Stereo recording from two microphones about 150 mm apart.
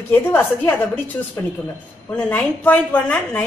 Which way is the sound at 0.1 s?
15° left (ahead or behind).